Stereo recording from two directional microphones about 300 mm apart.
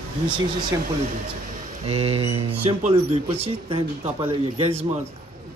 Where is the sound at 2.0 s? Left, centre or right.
Centre.